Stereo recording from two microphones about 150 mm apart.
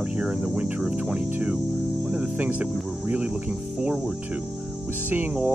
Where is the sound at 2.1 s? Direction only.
10° right (ahead or behind).